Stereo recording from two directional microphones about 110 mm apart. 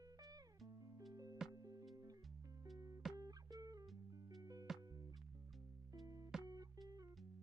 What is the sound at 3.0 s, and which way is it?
Music, centre (ahead or behind).